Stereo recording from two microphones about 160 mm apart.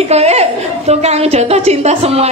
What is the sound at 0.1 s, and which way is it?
A woman's voice, 40° right (ahead or behind).